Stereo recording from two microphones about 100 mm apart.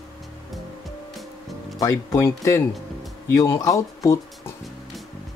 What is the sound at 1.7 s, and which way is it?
Speech, 30° left (ahead or behind).